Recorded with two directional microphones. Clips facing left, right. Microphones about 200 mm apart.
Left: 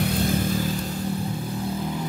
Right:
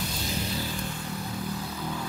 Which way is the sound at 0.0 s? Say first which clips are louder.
Left 9 dB; 55° left (ahead or behind).